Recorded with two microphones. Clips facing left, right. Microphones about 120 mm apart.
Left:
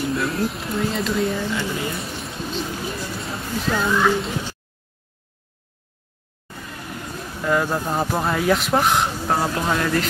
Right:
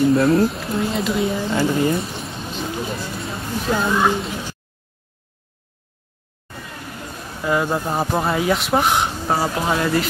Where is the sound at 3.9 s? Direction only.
20° right (ahead or behind).